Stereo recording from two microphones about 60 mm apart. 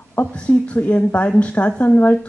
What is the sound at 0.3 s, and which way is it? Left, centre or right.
Speech, left.